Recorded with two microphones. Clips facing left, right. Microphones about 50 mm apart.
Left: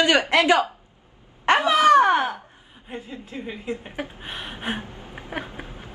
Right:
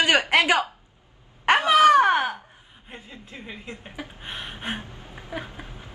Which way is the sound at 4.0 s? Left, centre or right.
Left.